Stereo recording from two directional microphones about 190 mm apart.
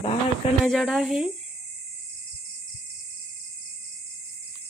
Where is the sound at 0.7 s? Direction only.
Centre (ahead or behind).